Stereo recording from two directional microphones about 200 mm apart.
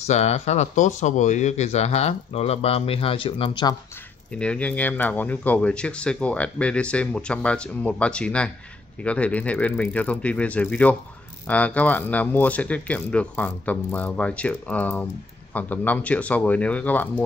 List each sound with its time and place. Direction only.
0.0 s speech: 35° left (ahead or behind)
4.3 s speech: 5° left (ahead or behind)